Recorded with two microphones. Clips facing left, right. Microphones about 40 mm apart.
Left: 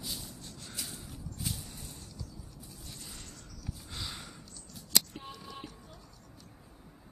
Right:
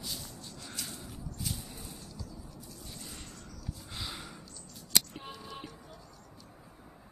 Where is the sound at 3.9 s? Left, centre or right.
Centre.